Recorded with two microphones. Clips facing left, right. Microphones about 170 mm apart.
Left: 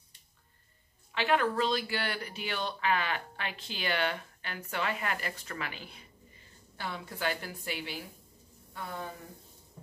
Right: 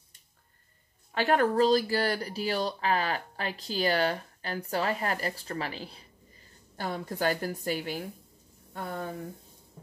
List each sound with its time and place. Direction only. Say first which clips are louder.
1.1 s speech: right 4 dB; 40° right (ahead or behind)